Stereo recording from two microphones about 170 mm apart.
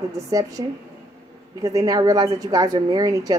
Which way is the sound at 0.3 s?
20° right (ahead or behind).